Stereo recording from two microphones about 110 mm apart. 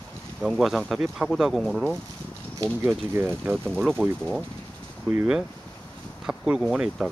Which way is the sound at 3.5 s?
Centre (ahead or behind).